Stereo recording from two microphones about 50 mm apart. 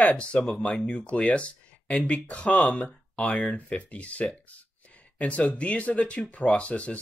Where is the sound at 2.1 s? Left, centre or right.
Left.